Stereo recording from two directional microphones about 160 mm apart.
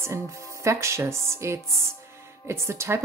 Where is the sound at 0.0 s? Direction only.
15° right (ahead or behind).